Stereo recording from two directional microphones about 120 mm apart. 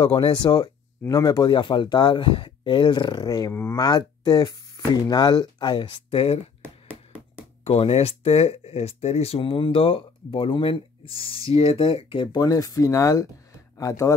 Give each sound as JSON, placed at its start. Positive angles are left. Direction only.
{"t": 0.0, "sound": "speech", "side_deg": 40}
{"t": 7.6, "sound": "speech", "side_deg": 55}